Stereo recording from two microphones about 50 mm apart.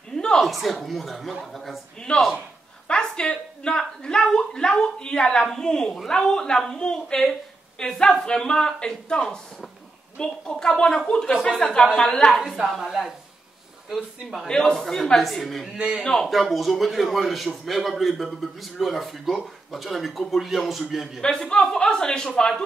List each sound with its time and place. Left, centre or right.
0.1 s a sound: centre
0.4 s speech: centre
12.7 s speech: centre
14.5 s speech: centre
16.0 s speech: centre
16.3 s speech: centre
21.2 s speech: centre